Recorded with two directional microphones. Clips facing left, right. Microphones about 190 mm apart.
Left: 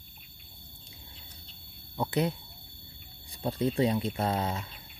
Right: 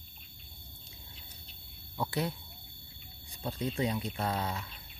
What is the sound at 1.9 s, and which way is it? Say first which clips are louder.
Speech: left 5 dB; 20° left (ahead or behind).